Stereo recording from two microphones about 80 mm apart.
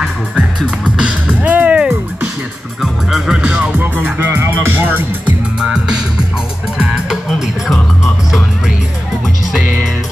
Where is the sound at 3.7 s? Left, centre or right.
Right.